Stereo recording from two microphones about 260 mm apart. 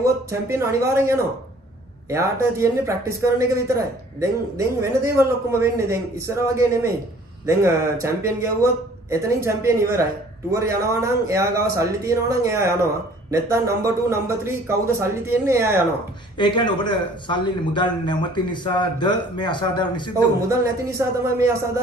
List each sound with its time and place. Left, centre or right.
0.0 s speech: centre
16.3 s a man's voice: centre
20.3 s speech: centre